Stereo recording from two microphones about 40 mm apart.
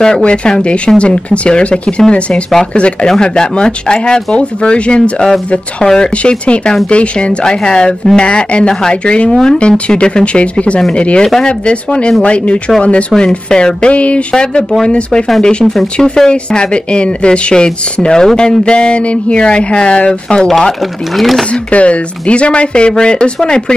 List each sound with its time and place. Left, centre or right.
0.2 s speech: left
13.9 s speech: left
14.3 s speech: centre
15.4 s speech: centre
21.2 s speech: centre
21.6 s speech: left